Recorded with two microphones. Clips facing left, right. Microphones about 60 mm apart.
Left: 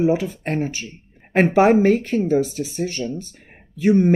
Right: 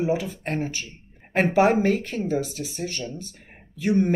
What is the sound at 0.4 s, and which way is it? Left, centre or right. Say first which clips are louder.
Speech: left 4 dB; left.